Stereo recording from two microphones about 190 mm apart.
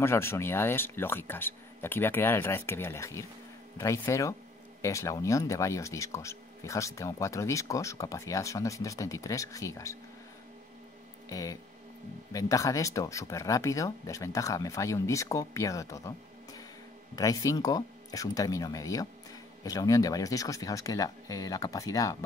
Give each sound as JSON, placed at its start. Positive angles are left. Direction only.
{"t": 0.0, "sound": "speech", "side_deg": 15}
{"t": 11.2, "sound": "speech", "side_deg": 20}